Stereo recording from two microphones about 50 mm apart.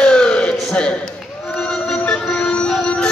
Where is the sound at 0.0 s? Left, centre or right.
Centre.